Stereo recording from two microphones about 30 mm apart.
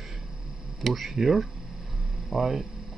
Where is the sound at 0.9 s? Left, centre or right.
Centre.